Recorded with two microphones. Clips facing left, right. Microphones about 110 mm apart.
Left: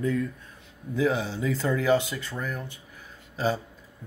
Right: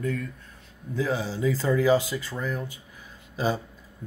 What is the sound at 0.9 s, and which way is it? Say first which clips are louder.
Speech: left 2 dB; centre (ahead or behind).